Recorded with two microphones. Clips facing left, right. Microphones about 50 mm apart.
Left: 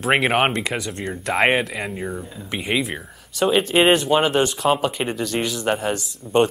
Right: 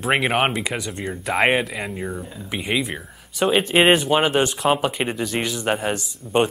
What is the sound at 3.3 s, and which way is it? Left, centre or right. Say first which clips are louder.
Speech: even; centre.